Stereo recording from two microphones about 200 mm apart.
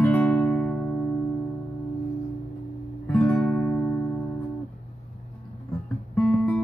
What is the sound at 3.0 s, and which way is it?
Music, 10° left (ahead or behind).